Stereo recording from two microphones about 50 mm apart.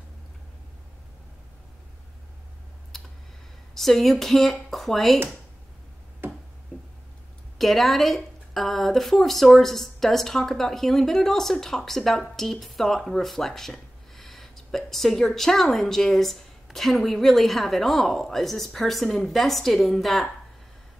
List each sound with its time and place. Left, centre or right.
2.9 s clicking: centre
3.7 s a woman's voice: centre
6.2 s a sound: right
7.5 s a woman's voice: centre